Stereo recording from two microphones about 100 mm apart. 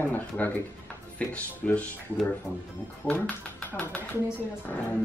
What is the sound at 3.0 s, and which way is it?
Speech, 15° left (ahead or behind).